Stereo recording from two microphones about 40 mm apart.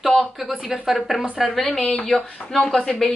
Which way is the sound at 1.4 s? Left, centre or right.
Centre.